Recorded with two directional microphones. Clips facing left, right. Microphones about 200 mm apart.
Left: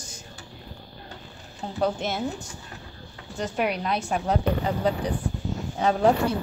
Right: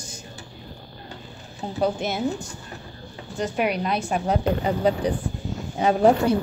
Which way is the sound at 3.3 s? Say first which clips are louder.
Right 3 dB; 5° right (ahead or behind).